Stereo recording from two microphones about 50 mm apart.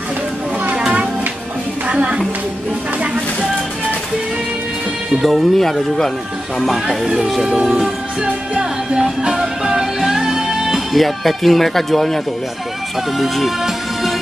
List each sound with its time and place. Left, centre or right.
1.9 s music: right
5.2 s speech: centre
7.6 s music: centre
13.2 s music: centre